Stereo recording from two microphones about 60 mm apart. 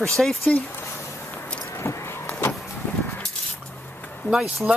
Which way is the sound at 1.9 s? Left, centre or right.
Left.